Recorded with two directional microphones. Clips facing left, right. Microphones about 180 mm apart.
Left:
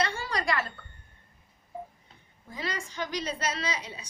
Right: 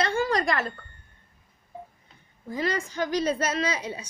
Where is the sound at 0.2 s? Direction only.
45° right (ahead or behind).